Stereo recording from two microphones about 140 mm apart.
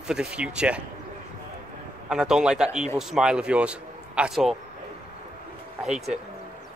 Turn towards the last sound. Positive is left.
turn(degrees=-5)  # may be behind; listen again after turning